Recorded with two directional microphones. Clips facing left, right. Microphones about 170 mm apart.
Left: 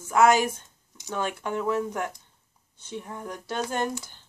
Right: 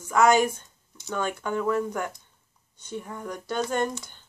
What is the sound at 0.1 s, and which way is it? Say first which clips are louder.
Speech: even; 5° left (ahead or behind).